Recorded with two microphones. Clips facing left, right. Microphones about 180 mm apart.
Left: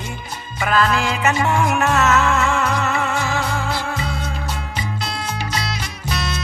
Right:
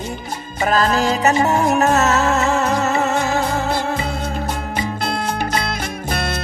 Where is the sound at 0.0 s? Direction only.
40° right (ahead or behind).